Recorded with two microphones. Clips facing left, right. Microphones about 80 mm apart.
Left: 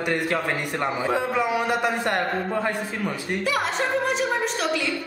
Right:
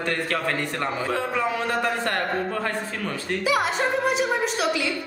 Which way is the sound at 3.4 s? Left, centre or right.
Centre.